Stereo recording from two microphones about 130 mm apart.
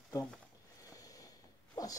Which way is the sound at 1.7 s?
30° left (ahead or behind).